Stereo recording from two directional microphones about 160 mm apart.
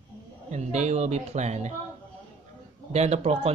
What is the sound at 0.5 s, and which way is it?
Speech, 45° right (ahead or behind).